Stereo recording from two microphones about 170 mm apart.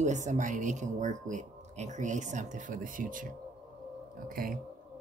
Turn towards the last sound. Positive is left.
turn(degrees=-55)  # may be behind; listen again after turning